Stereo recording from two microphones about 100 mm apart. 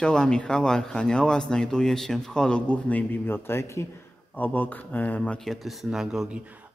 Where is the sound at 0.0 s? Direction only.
10° left (ahead or behind).